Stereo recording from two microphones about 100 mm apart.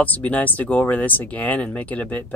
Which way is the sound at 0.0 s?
15° left (ahead or behind).